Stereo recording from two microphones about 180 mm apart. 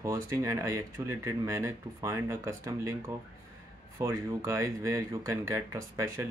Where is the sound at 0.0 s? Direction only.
15° right (ahead or behind).